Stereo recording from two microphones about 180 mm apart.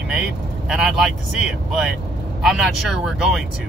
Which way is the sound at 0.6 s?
Centre (ahead or behind).